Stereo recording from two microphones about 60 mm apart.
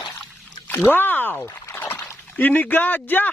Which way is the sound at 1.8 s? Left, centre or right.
Left.